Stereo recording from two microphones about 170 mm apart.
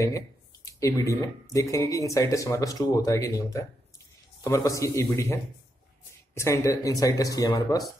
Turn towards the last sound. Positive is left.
turn(degrees=20)  # may be behind; listen again after turning